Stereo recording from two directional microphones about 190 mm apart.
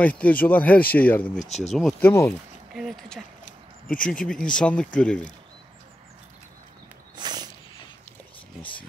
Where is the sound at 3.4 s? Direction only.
45° left (ahead or behind).